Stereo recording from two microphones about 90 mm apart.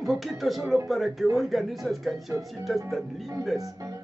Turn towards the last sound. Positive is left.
turn(degrees=-40)  # may be behind; listen again after turning